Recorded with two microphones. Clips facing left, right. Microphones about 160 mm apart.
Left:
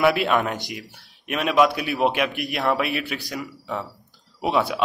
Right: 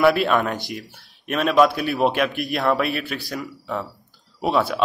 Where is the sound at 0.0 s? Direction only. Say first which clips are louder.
Right 2 dB; 20° left (ahead or behind).